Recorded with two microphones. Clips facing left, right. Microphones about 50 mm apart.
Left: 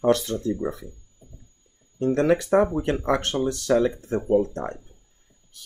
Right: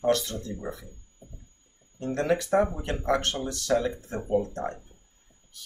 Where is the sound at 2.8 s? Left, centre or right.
Left.